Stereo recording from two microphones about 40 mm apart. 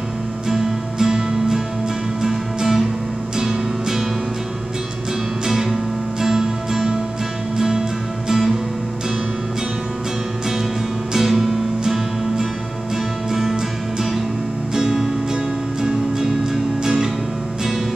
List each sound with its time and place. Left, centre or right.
0.5 s music: centre
6.2 s music: centre
11.1 s music: centre